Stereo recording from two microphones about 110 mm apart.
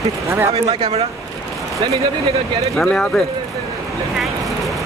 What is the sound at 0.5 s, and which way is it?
Speech, 65° right (ahead or behind).